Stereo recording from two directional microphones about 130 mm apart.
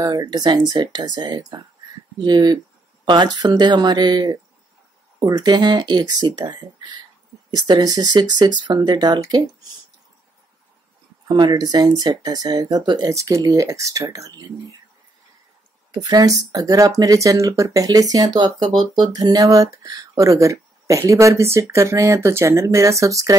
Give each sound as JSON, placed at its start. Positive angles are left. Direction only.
{"t": 0.0, "sound": "speech", "side_deg": -30}
{"t": 11.2, "sound": "speech", "side_deg": -35}
{"t": 15.9, "sound": "speech", "side_deg": -30}